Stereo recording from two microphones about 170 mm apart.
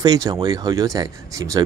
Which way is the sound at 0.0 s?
20° right (ahead or behind).